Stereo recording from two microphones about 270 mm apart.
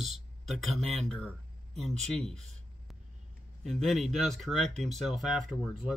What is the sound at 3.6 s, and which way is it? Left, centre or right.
Speech, centre.